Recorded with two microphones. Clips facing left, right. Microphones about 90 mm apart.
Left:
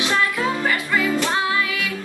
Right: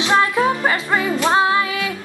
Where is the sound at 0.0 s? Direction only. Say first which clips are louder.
Right 5 dB; 25° right (ahead or behind).